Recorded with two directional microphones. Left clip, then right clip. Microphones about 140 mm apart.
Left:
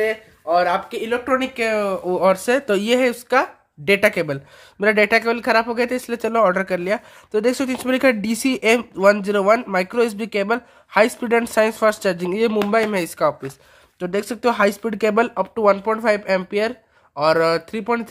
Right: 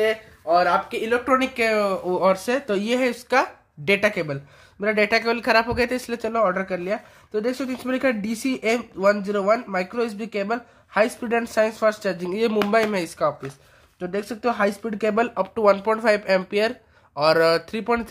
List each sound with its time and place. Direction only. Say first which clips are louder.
0.0 s speech: left 1 dB; 20° left (ahead or behind)
6.2 s speech: left 5 dB; 40° left (ahead or behind); by 18.0 s 15° left (ahead or behind)